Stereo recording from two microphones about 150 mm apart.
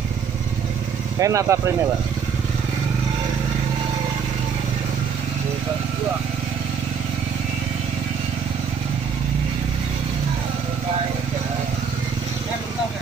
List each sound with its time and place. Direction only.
1.2 s speech: 20° right (ahead or behind)